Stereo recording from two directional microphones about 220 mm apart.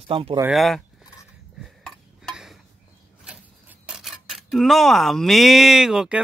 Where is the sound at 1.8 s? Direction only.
Centre (ahead or behind).